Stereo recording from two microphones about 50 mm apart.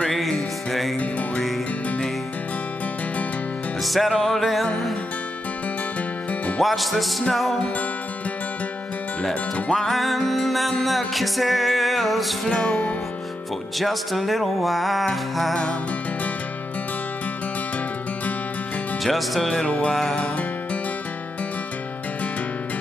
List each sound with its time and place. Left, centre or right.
0.1 s music: centre
3.8 s music: centre
6.6 s music: centre
9.8 s music: centre
12.4 s music: centre
13.7 s music: centre
19.0 s music: centre
19.6 s music: left
19.9 s music: centre